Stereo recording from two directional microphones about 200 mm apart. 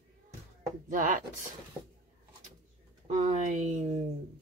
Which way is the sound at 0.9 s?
40° right (ahead or behind).